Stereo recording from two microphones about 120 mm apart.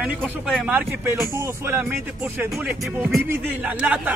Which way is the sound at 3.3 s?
10° right (ahead or behind).